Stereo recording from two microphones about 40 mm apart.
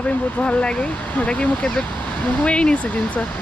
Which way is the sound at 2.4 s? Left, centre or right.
Left.